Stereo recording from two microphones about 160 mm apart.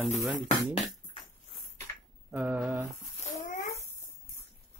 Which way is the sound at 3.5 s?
45° left (ahead or behind).